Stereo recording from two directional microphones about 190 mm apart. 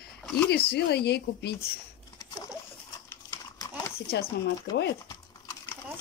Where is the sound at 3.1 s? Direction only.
15° left (ahead or behind).